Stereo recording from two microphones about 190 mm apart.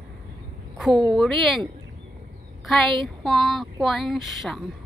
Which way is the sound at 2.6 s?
Centre (ahead or behind).